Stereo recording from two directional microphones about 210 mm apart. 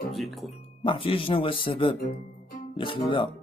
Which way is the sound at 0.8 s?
25° left (ahead or behind).